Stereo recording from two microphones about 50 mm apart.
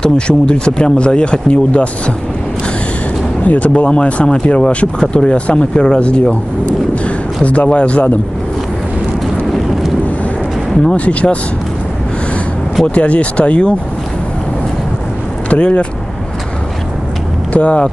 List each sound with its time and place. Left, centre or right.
0.0 s speech: centre
3.4 s speech: left
7.4 s speech: left
11.0 s speech: left
12.8 s speech: left
15.5 s speech: left
17.5 s speech: left